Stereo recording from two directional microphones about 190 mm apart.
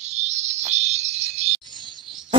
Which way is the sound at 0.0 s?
35° right (ahead or behind).